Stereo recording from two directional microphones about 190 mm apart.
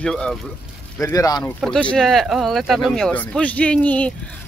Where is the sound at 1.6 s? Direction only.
5° left (ahead or behind).